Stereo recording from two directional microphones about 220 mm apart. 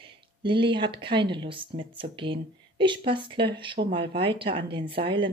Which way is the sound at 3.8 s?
35° right (ahead or behind).